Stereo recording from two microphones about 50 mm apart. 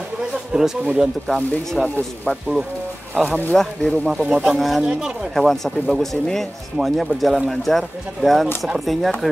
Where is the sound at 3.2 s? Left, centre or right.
Centre.